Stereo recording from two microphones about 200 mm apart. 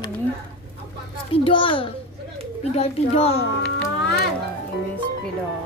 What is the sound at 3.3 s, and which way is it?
Speech, 60° left (ahead or behind).